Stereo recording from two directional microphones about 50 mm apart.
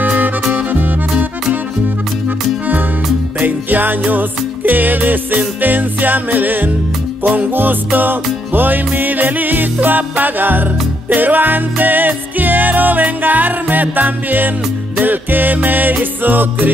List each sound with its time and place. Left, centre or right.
0.0 s music: right
3.3 s music: right